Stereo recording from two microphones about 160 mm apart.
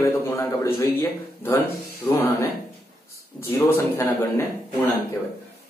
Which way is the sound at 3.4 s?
15° left (ahead or behind).